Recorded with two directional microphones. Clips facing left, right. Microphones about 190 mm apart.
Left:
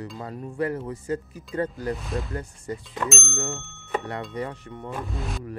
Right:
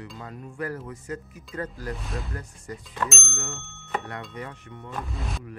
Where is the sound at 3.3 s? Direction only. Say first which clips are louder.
Left 6 dB; 35° left (ahead or behind).